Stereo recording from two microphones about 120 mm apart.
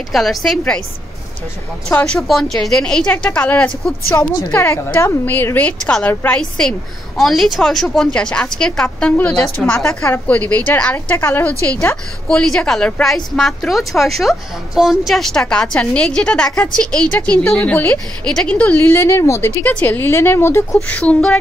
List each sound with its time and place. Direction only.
0.1 s a woman's voice: centre (ahead or behind)
2.1 s a woman's voice: centre (ahead or behind)
7.2 s a woman's voice: centre (ahead or behind); by 12.0 s 20° left (ahead or behind)
12.3 s a woman's voice: 5° left (ahead or behind); by 20.6 s 20° left (ahead or behind)
20.9 s a woman's voice: 10° left (ahead or behind)